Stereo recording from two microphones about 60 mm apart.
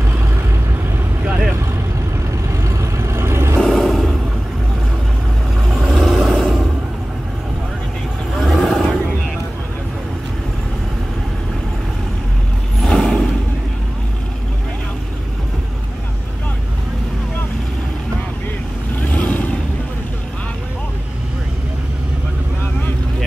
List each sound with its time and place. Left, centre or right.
2.6 s vehicle: right
3.7 s vehicle: centre
5.7 s vehicle: centre
8.6 s vehicle: centre
12.8 s vehicle: centre
18.9 s vehicle: left